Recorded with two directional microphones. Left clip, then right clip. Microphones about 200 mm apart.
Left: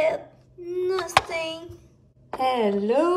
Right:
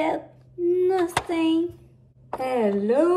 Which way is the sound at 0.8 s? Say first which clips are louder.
Even; centre (ahead or behind).